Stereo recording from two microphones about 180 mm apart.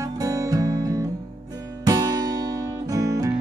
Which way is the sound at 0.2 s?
20° right (ahead or behind).